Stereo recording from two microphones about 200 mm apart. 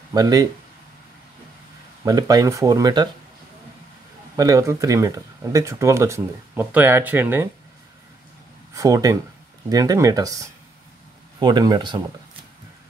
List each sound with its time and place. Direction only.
0.1 s speech: 20° right (ahead or behind)
2.0 s speech: 20° right (ahead or behind)
4.4 s speech: 15° right (ahead or behind)
8.7 s speech: 15° right (ahead or behind)